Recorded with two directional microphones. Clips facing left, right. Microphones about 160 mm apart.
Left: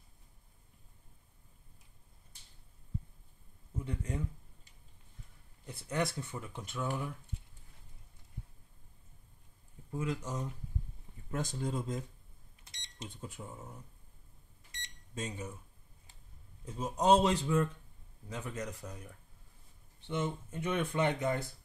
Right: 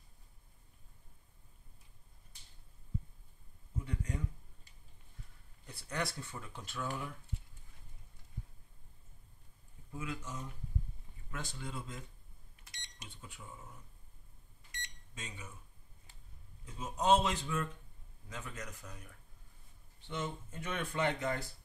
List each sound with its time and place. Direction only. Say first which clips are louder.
3.8 s speech: left 3 dB; 25° left (ahead or behind)
5.7 s speech: left 5 dB; 20° left (ahead or behind)
9.8 s speech: left 6 dB; 35° left (ahead or behind)
12.6 s microwave oven: left 7 dB; 25° left (ahead or behind)
13.1 s speech: left 4 dB; 40° left (ahead or behind)
15.1 s speech: left 9 dB; 40° left (ahead or behind)
16.6 s speech: left 3 dB; 40° left (ahead or behind)
20.1 s speech: left 5 dB; 20° left (ahead or behind)